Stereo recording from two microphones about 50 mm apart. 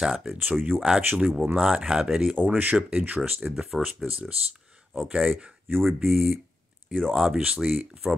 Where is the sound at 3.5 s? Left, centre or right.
Centre.